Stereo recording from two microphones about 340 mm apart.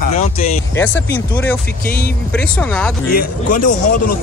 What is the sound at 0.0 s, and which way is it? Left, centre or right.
Music, centre.